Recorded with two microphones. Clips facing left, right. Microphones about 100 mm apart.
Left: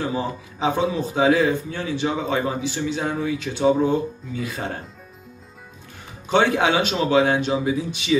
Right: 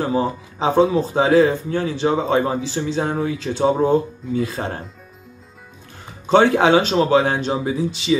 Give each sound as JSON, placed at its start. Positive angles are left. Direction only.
{"t": 0.0, "sound": "a man's voice", "side_deg": -35}
{"t": 6.2, "sound": "a man's voice", "side_deg": -35}